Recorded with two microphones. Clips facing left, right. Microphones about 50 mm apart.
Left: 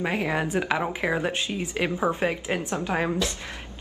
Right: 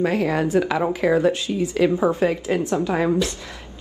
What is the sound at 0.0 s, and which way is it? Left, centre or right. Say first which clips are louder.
A woman's voice: right 6 dB; left.